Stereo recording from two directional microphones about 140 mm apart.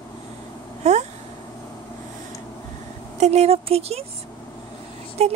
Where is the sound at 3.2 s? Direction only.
50° right (ahead or behind).